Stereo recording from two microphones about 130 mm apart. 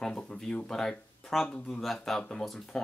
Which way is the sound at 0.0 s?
5° left (ahead or behind).